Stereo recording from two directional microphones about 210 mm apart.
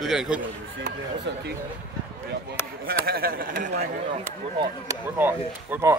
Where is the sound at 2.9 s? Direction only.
45° right (ahead or behind).